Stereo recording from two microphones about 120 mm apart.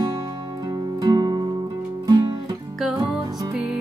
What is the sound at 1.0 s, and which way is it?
Music, 35° right (ahead or behind).